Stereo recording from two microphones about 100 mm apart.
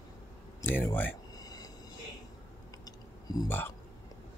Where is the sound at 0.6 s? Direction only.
20° left (ahead or behind).